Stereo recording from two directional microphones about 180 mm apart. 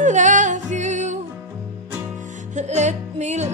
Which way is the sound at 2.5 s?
40° right (ahead or behind).